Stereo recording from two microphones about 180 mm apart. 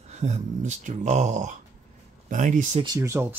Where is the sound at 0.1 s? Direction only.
40° right (ahead or behind).